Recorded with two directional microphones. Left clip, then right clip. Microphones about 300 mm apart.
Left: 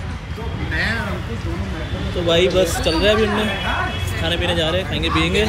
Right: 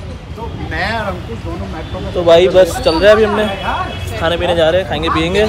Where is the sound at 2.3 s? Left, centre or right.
Centre.